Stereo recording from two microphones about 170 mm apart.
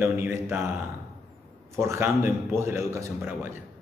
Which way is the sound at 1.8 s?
15° right (ahead or behind).